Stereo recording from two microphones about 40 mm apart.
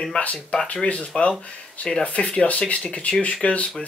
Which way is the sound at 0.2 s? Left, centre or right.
Left.